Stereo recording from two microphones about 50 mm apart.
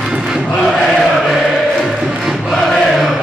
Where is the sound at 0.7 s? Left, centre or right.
Centre.